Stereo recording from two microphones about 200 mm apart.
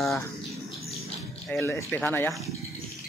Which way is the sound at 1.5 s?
10° left (ahead or behind).